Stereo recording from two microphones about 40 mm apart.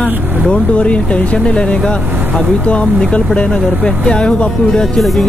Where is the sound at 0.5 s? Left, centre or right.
Left.